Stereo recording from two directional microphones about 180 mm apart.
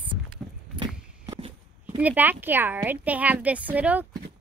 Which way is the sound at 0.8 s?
30° right (ahead or behind).